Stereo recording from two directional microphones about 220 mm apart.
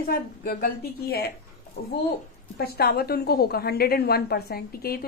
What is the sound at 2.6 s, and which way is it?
A woman's voice, 45° left (ahead or behind).